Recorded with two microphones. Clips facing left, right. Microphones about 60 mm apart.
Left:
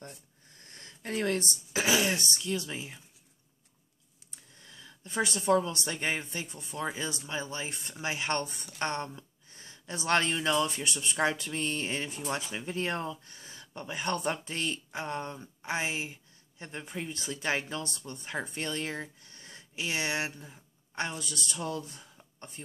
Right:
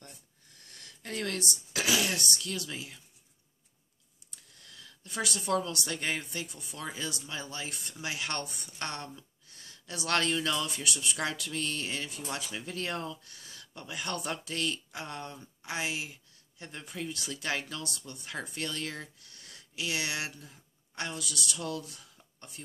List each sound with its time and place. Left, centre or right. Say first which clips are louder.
0.6 s speech: left 3 dB; left
4.6 s speech: left 1 dB; left